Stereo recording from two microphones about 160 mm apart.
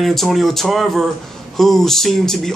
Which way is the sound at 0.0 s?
Centre (ahead or behind).